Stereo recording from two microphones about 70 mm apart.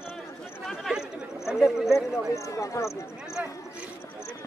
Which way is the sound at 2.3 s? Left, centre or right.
Left.